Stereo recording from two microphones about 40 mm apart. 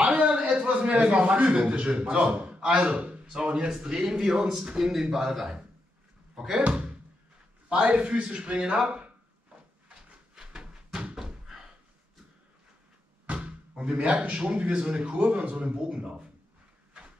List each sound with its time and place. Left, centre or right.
0.0 s a man's voice: right; by 2.3 s centre
2.3 s a man's voice: right
7.7 s speech: right
10.3 s a sound: centre
11.1 s slam: centre
13.3 s speech: right